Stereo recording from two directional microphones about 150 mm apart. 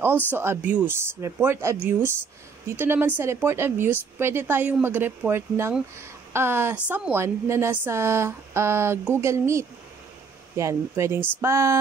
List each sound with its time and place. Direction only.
0.0 s speech: 15° right (ahead or behind)